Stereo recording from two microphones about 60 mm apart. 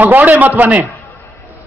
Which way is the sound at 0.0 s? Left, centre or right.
Right.